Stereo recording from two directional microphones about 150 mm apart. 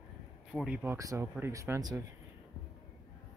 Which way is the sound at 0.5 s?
5° right (ahead or behind).